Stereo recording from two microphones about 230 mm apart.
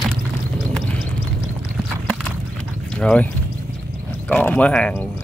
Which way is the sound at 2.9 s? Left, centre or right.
Centre.